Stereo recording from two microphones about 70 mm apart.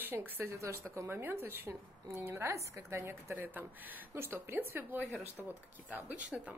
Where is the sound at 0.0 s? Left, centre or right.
Right.